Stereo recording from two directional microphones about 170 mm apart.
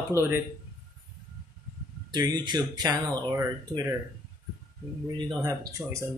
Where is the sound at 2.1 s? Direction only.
25° right (ahead or behind).